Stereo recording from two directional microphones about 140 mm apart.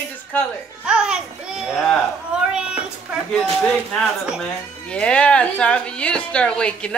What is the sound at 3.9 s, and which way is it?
Speech, 5° left (ahead or behind).